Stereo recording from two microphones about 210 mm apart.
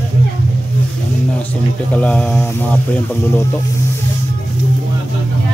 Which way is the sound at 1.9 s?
5° left (ahead or behind).